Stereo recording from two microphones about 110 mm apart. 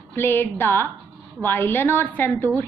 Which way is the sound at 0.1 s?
20° left (ahead or behind).